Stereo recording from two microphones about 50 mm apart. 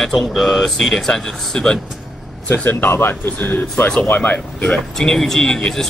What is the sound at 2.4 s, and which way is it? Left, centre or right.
Speech, left.